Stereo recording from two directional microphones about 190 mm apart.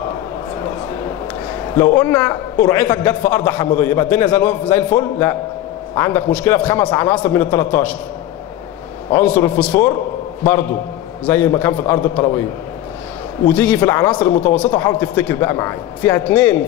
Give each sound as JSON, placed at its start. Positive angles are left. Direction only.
{"t": 1.8, "sound": "a man's voice", "side_deg": 10}
{"t": 9.1, "sound": "a man's voice", "side_deg": 10}
{"t": 11.2, "sound": "a man's voice", "side_deg": 10}
{"t": 13.5, "sound": "a man's voice", "side_deg": 10}